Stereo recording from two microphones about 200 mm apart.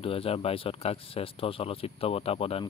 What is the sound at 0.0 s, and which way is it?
Speech, 30° left (ahead or behind).